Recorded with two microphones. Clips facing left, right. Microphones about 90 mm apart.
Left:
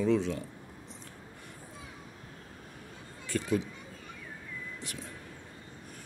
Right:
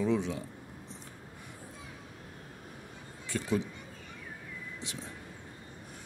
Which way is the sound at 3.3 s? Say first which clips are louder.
Left 3 dB; 25° right (ahead or behind).